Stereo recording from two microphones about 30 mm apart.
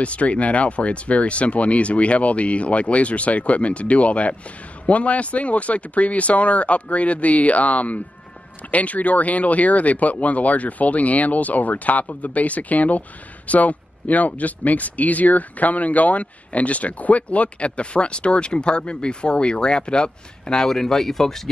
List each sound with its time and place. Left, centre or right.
0.0 s speech: left
20.5 s speech: centre